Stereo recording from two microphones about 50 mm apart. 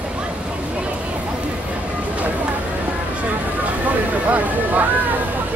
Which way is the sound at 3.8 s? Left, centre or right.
Right.